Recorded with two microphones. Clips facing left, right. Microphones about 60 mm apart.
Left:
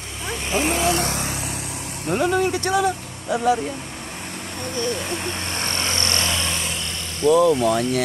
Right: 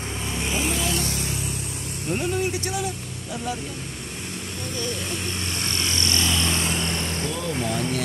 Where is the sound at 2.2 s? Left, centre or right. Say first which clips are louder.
Left 8 dB; left.